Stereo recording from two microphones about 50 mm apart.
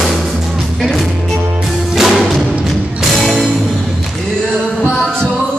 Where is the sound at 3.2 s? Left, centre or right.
Centre.